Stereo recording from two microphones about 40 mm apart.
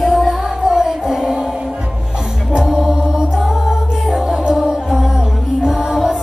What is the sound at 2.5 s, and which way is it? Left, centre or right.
Chant, centre.